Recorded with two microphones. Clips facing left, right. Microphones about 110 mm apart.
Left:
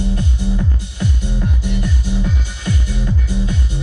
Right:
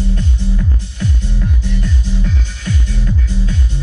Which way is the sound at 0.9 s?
20° left (ahead or behind).